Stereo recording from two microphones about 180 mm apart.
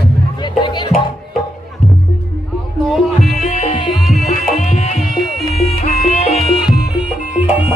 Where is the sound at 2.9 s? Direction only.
Centre (ahead or behind).